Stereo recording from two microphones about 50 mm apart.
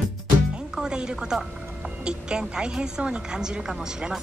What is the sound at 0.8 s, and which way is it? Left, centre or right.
Speech, centre.